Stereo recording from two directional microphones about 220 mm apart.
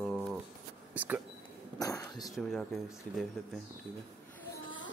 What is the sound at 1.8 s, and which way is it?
Speech, 15° left (ahead or behind).